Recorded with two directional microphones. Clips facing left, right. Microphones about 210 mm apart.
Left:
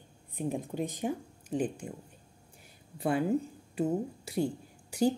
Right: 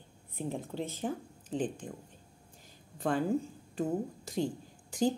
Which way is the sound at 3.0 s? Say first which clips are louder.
Left 2 dB; 10° left (ahead or behind).